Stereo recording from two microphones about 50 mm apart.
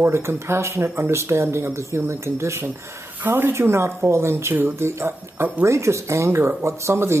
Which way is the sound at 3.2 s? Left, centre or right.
Right.